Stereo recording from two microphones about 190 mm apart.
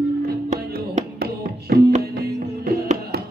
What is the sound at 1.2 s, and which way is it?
Music, 55° right (ahead or behind).